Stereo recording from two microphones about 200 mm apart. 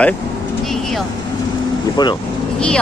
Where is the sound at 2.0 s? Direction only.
20° left (ahead or behind).